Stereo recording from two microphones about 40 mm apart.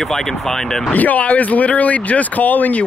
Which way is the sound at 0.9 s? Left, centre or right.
Left.